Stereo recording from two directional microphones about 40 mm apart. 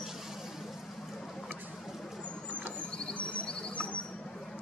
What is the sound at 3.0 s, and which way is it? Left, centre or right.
Cricket, left.